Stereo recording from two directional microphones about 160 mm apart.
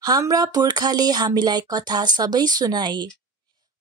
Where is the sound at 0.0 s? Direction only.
20° right (ahead or behind).